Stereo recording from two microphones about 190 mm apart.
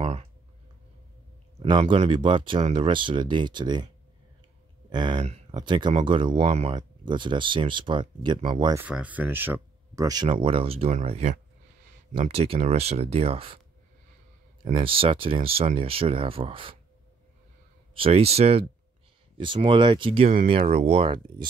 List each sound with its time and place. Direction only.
0.0 s a sound: 30° right (ahead or behind)
1.6 s speech: 30° right (ahead or behind)
8.7 s speech: 5° right (ahead or behind); by 13.6 s 30° right (ahead or behind)
14.6 s speech: 25° right (ahead or behind)
17.9 s speech: 30° right (ahead or behind)